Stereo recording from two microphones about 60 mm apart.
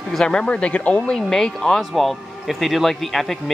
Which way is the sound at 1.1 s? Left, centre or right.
Centre.